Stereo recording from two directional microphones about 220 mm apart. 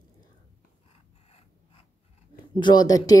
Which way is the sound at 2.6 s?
20° left (ahead or behind).